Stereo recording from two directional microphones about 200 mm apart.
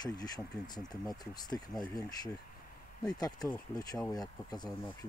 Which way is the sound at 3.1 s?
20° left (ahead or behind).